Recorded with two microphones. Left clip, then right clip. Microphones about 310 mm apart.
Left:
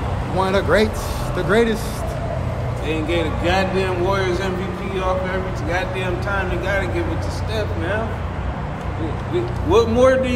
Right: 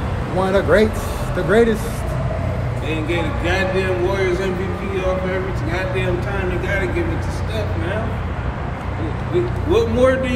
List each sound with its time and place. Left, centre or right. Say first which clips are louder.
0.4 s speech: right 2 dB; centre
2.9 s a man's voice: left 1 dB; centre
9.7 s a man's voice: left 2 dB; centre